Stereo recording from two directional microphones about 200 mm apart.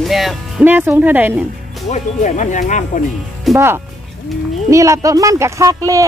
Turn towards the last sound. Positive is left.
turn(degrees=-15)  # may be behind; listen again after turning